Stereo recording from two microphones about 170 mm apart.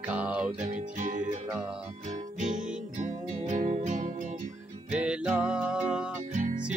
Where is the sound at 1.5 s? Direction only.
5° right (ahead or behind).